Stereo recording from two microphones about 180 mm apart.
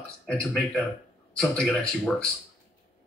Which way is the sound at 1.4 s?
Centre (ahead or behind).